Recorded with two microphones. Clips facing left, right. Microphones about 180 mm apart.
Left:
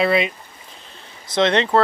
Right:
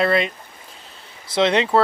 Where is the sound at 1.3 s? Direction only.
10° right (ahead or behind).